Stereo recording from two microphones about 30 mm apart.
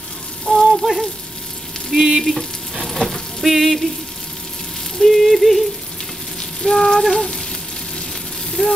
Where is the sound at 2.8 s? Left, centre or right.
Centre.